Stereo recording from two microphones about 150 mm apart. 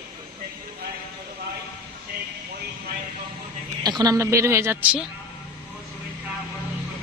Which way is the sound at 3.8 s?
25° right (ahead or behind).